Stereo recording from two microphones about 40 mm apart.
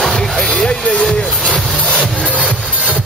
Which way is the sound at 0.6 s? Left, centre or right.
Left.